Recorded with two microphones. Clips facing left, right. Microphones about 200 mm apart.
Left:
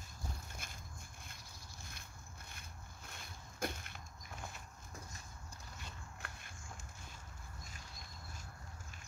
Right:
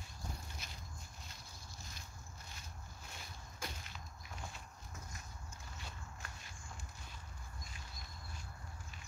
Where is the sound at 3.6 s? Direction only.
55° left (ahead or behind).